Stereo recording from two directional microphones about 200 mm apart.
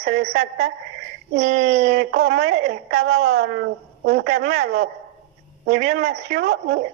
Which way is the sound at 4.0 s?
60° right (ahead or behind).